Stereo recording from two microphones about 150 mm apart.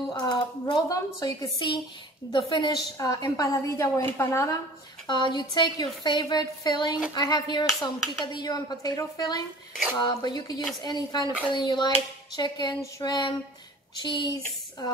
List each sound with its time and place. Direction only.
0.1 s a woman's voice: 30° left (ahead or behind)
5.0 s a woman's voice: 30° left (ahead or behind)